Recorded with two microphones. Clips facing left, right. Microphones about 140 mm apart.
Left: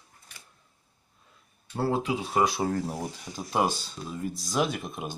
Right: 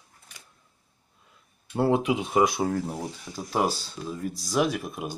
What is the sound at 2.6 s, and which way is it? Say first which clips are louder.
Speech: right 1 dB; centre (ahead or behind).